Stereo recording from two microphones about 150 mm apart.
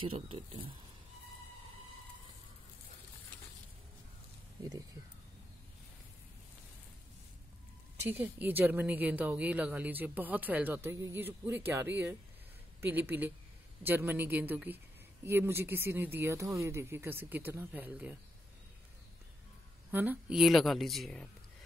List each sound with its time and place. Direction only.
0.0 s speech: 35° right (ahead or behind)
8.0 s speech: 10° right (ahead or behind)
19.9 s speech: 10° right (ahead or behind)